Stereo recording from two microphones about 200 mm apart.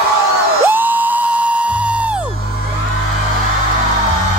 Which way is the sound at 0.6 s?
10° right (ahead or behind).